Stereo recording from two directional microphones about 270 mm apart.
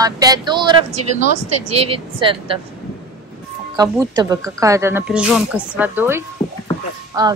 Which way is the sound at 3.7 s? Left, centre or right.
Centre.